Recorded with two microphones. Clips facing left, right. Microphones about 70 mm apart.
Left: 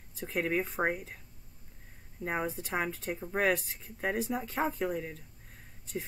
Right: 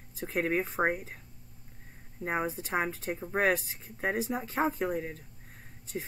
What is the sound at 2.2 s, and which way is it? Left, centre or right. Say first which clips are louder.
Speech: right 2 dB; centre.